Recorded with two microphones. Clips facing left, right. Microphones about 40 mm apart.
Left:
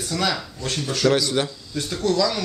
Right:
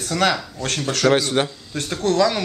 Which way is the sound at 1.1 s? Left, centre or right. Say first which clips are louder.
Right 3 dB; right.